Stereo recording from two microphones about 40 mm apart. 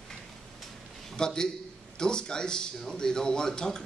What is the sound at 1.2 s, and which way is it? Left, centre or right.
A man's voice, centre.